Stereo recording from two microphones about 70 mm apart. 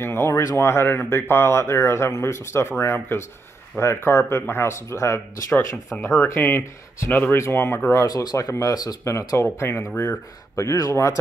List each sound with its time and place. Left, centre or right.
0.0 s speech: left
8.2 s speech: left
9.4 s speech: left